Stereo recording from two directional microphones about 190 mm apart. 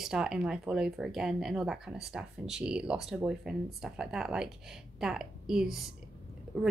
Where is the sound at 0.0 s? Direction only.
5° right (ahead or behind).